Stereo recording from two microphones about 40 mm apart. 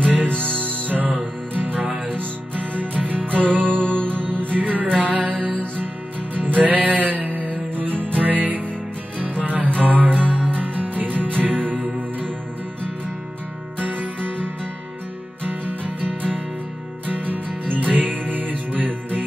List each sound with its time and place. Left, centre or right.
0.7 s music: right
3.8 s music: left
4.4 s music: right
13.7 s music: right